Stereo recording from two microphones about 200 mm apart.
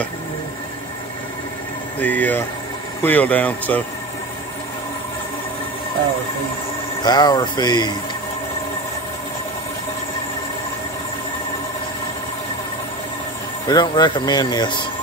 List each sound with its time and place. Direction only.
2.0 s speech: 10° left (ahead or behind)
7.0 s speech: 20° left (ahead or behind)
13.7 s speech: 20° left (ahead or behind)